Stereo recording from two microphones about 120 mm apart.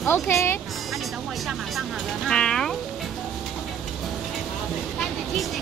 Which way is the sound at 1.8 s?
5° left (ahead or behind).